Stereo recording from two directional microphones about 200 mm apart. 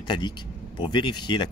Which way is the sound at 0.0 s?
20° left (ahead or behind).